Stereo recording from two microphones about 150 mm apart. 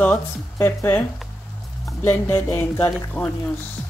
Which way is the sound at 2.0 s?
15° left (ahead or behind).